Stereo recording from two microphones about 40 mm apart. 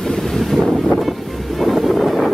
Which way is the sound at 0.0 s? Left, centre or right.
Centre.